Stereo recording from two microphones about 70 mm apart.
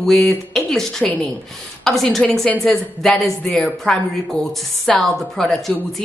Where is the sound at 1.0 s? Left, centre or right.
Centre.